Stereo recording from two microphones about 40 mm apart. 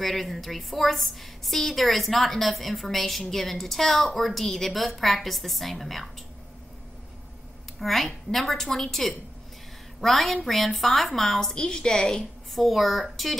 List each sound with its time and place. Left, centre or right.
0.0 s a woman's voice: centre
7.8 s a woman's voice: centre
11.5 s a woman's voice: centre
12.5 s a woman's voice: centre